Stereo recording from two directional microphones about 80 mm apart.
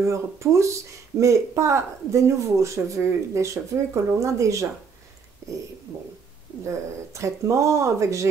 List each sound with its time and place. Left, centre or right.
0.0 s speech: right
6.6 s speech: right